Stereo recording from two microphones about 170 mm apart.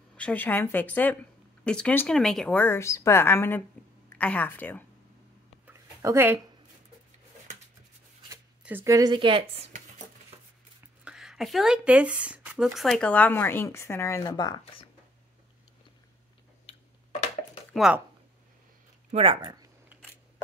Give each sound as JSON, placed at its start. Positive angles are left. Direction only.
{"t": 0.2, "sound": "speech", "side_deg": 10}
{"t": 5.7, "sound": "a sound", "side_deg": -15}
{"t": 8.6, "sound": "a woman's voice", "side_deg": -15}
{"t": 9.7, "sound": "a sound", "side_deg": -50}
{"t": 11.1, "sound": "speech", "side_deg": -5}
{"t": 17.7, "sound": "speech", "side_deg": -5}
{"t": 19.1, "sound": "speech", "side_deg": -30}